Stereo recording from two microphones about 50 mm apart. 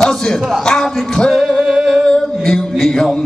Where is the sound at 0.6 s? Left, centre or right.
Centre.